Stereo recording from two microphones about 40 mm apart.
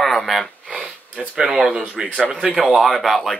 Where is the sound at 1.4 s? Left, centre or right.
Centre.